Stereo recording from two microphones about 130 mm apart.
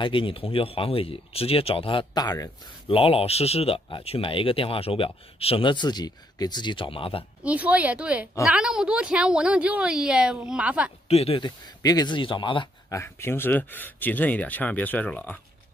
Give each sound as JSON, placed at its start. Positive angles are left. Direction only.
{"t": 0.0, "sound": "speech", "side_deg": 40}
{"t": 2.9, "sound": "speech", "side_deg": 45}
{"t": 7.4, "sound": "a woman's voice", "side_deg": -10}
{"t": 11.1, "sound": "speech", "side_deg": 50}
{"t": 12.9, "sound": "speech", "side_deg": 20}